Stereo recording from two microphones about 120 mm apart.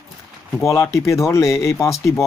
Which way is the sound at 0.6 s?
25° left (ahead or behind).